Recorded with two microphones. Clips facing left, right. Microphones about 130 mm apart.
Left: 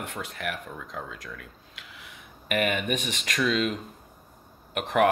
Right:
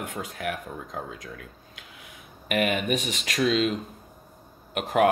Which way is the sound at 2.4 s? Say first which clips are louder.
Right 1 dB; 45° left (ahead or behind).